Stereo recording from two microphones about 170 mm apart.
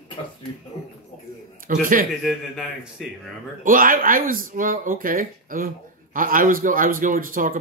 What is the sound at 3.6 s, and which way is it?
A man's voice, 55° right (ahead or behind).